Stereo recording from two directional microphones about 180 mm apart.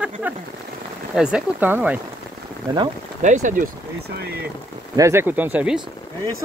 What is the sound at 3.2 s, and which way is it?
Speech, 45° right (ahead or behind).